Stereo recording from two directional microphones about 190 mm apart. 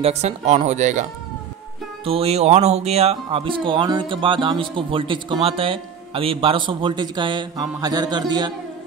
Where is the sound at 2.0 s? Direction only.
30° right (ahead or behind).